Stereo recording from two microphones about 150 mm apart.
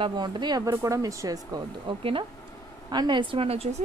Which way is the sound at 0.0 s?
30° right (ahead or behind).